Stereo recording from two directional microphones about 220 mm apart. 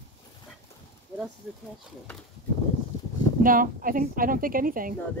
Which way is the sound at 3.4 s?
40° right (ahead or behind).